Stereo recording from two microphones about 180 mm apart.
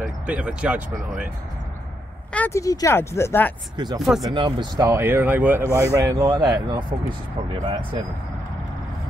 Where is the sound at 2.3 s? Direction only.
15° left (ahead or behind).